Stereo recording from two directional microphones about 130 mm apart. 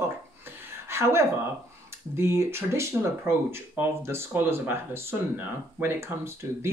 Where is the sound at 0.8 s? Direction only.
20° right (ahead or behind).